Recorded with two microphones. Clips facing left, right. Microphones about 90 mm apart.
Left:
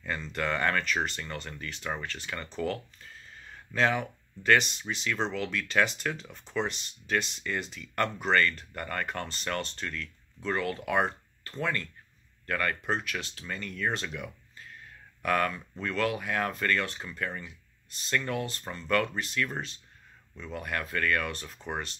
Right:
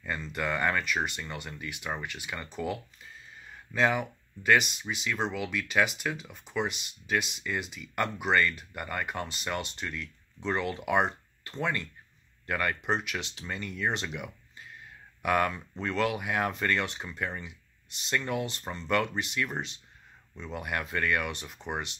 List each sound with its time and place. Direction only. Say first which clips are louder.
0.0 s speech: left 1 dB; 5° right (ahead or behind)